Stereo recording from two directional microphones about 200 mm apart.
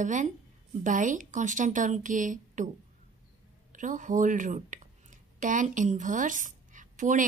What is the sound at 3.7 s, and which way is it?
A woman's voice, 40° right (ahead or behind).